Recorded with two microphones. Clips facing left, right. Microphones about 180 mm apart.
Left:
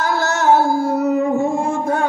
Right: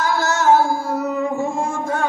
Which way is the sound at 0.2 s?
60° left (ahead or behind).